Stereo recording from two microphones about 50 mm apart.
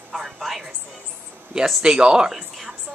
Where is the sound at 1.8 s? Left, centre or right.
Centre.